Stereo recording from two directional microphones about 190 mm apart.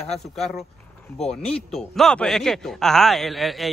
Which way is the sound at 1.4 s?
5° left (ahead or behind).